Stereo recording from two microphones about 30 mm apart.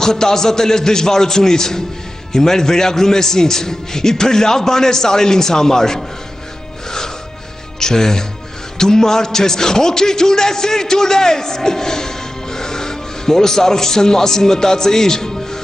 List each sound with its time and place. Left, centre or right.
0.0 s a man's voice: centre
7.8 s a man's voice: centre